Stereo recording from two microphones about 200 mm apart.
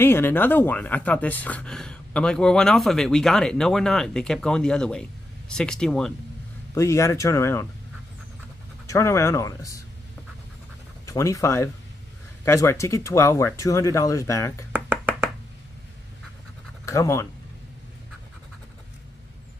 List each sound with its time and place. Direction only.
0.0 s speech: 10° left (ahead or behind)
6.7 s speech: 15° left (ahead or behind)
8.8 s speech: 15° left (ahead or behind)
11.1 s speech: 15° left (ahead or behind)
14.7 s a sound: 10° right (ahead or behind)
16.8 s speech: 15° left (ahead or behind)